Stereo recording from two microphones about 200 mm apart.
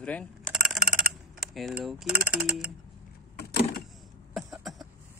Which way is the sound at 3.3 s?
55° left (ahead or behind).